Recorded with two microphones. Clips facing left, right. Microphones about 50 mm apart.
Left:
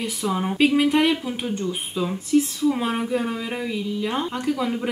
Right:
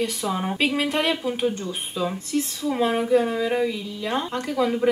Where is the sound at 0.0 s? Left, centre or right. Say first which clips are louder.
Even; centre.